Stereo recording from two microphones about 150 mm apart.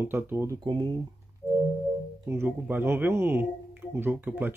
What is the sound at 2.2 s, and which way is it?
Speech, 15° right (ahead or behind).